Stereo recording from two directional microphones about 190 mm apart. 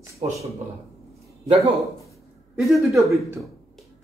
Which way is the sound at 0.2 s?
30° right (ahead or behind).